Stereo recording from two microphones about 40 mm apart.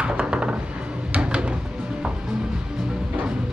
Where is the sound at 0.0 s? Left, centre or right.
Right.